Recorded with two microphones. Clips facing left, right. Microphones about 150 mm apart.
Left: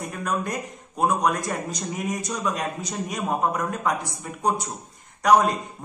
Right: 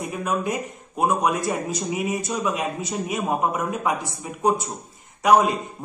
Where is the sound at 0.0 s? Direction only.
5° right (ahead or behind).